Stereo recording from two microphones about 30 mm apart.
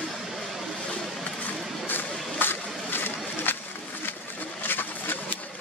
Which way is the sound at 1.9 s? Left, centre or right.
Left.